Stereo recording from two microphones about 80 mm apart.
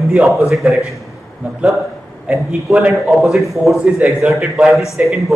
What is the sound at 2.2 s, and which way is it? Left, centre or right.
A man's voice, centre.